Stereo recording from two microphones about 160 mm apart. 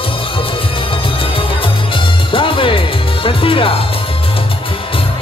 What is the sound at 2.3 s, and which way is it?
Music, 35° left (ahead or behind).